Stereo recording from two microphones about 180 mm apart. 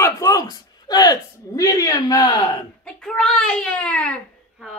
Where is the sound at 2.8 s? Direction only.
5° left (ahead or behind).